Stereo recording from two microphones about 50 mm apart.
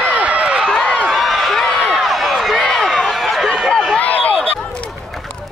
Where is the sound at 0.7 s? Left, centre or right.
Centre.